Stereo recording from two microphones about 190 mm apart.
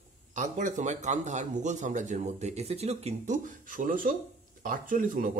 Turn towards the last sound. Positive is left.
turn(degrees=-45)  # may be behind; listen again after turning